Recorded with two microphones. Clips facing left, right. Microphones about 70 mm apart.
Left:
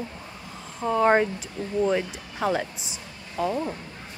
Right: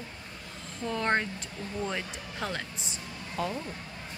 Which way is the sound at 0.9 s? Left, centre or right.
Centre.